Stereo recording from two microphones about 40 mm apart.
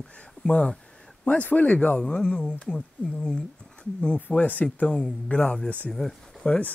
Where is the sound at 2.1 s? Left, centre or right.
Left.